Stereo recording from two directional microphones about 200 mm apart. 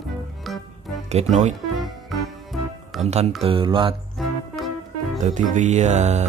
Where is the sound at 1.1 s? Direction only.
35° right (ahead or behind).